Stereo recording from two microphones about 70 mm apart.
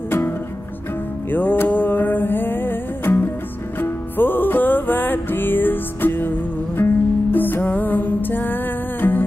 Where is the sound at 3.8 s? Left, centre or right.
Left.